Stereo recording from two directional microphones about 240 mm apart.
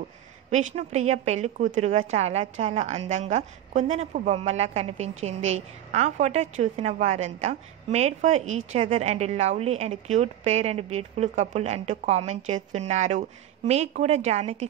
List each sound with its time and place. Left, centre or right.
0.5 s a woman's voice: right